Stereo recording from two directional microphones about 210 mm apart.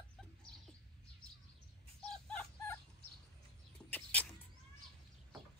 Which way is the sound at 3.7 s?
5° left (ahead or behind).